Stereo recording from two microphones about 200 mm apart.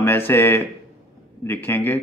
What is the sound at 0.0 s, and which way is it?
Speech, 10° left (ahead or behind).